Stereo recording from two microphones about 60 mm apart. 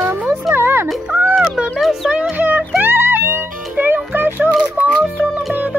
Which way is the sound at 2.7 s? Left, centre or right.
Right.